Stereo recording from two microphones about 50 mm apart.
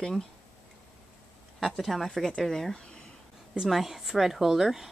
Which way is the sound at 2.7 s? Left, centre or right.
Centre.